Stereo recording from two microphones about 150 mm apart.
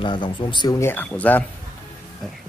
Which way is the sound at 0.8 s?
15° left (ahead or behind).